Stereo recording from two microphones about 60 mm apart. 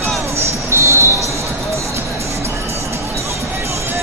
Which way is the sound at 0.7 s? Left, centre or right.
Right.